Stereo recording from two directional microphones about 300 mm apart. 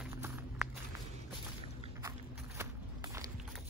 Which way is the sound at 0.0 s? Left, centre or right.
Centre.